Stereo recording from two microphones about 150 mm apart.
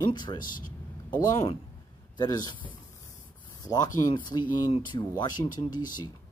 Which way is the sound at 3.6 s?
25° left (ahead or behind).